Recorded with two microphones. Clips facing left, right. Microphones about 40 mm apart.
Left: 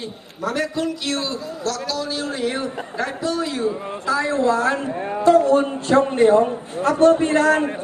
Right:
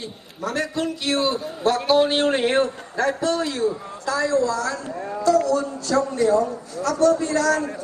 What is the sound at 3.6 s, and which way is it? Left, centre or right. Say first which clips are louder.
Speech: left 2 dB; left.